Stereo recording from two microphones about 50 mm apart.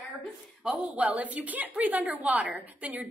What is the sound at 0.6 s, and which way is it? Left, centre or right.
Speech, centre.